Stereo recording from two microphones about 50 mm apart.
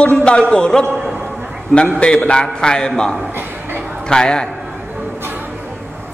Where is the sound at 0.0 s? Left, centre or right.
Left.